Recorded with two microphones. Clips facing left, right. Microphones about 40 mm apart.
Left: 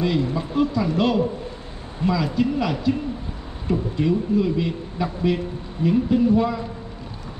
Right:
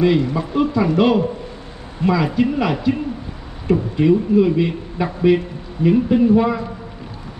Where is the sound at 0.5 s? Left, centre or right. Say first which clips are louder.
Right 5 dB; right.